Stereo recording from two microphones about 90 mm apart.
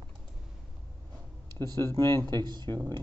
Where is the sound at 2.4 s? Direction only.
55° right (ahead or behind).